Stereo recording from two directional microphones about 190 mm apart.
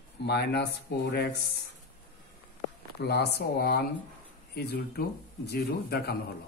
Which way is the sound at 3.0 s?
60° left (ahead or behind).